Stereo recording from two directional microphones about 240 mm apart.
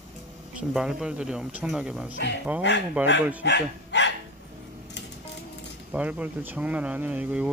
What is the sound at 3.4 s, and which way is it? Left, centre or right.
Bow-wow, left.